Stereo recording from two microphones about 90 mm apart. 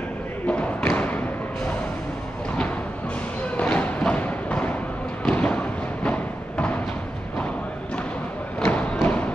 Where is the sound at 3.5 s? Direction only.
15° left (ahead or behind).